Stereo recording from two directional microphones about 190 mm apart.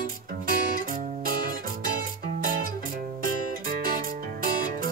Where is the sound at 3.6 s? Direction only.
50° right (ahead or behind).